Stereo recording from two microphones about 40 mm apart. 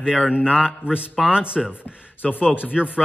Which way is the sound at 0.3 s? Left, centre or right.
Centre.